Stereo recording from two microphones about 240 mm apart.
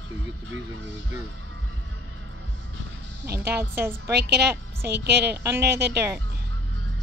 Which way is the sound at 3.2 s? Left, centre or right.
Right.